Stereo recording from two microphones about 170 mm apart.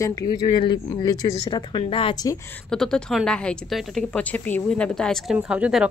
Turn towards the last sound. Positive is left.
turn(degrees=-5)  # may be behind; listen again after turning